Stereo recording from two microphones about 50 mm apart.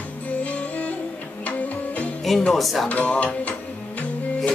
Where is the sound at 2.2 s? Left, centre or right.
Centre.